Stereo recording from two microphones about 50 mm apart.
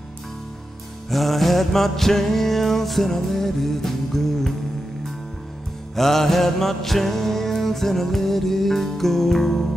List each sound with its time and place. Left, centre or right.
1.1 s music: centre
5.9 s music: centre